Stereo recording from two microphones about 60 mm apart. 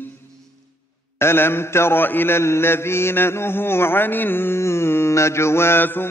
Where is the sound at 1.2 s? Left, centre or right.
Left.